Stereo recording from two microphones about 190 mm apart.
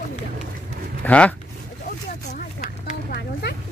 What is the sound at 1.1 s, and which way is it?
Speech, 5° left (ahead or behind).